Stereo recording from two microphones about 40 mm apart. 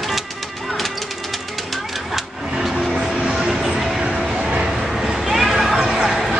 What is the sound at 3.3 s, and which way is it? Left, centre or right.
Vehicle, centre.